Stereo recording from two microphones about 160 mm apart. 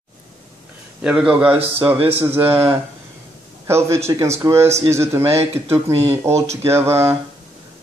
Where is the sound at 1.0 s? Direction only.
5° right (ahead or behind).